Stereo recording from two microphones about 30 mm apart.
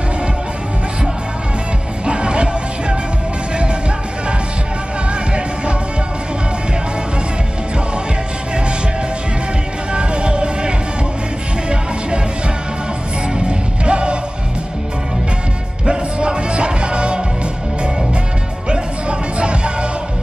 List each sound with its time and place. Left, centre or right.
2.0 s music: right
9.9 s music: right
13.4 s music: right
15.9 s music: right
18.7 s music: right